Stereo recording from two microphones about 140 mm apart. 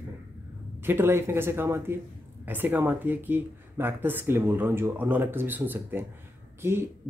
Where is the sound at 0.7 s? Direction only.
15° right (ahead or behind).